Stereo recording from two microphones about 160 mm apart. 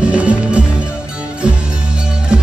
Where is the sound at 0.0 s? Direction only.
10° right (ahead or behind).